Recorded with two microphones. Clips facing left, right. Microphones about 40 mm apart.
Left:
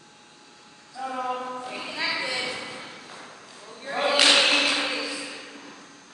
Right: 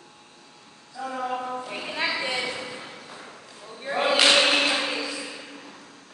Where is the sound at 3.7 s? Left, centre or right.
Centre.